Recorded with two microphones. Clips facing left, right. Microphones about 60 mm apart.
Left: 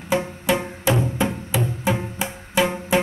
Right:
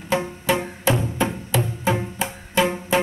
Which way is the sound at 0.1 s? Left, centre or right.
Centre.